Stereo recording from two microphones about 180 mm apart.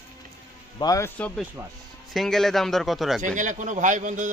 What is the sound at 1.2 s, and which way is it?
A man's voice, 10° left (ahead or behind).